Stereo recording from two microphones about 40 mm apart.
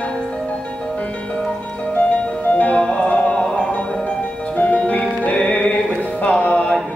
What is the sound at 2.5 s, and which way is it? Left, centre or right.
Music, left.